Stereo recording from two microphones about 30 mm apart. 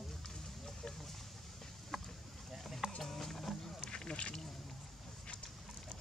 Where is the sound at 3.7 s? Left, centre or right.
Left.